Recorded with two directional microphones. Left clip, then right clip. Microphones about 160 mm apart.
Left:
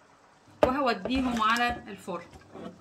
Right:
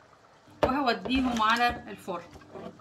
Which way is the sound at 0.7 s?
5° left (ahead or behind).